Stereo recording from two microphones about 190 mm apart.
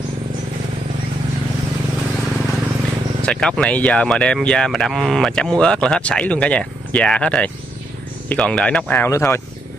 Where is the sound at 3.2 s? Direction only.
5° left (ahead or behind).